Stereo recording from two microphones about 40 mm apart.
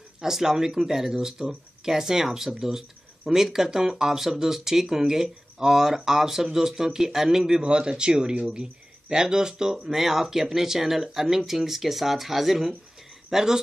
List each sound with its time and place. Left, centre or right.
0.2 s speech: centre